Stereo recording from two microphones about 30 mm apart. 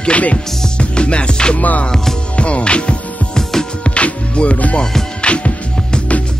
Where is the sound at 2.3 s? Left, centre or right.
Left.